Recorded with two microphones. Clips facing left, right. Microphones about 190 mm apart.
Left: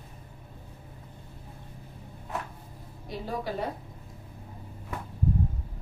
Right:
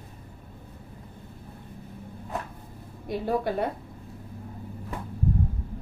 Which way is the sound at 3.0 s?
55° right (ahead or behind).